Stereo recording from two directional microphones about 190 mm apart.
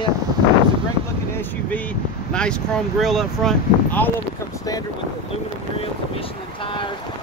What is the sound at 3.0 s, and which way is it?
Speech, centre (ahead or behind).